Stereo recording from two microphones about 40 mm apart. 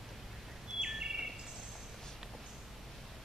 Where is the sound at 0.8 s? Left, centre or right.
Centre.